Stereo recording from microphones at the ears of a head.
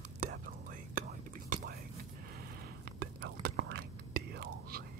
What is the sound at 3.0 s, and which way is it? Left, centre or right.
Whispering, right.